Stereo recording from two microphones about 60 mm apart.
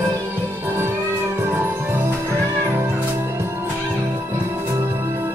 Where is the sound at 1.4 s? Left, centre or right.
Right.